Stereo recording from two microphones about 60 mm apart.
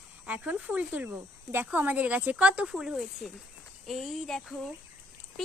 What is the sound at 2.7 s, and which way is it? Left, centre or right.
Speech, centre.